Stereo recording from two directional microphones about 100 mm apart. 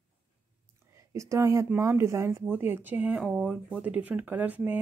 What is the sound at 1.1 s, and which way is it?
Speech, 30° right (ahead or behind).